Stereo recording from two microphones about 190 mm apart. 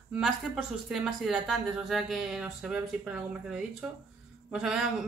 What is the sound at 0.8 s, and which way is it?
Speech, 5° right (ahead or behind).